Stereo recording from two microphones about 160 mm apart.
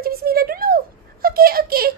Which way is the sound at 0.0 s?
70° right (ahead or behind).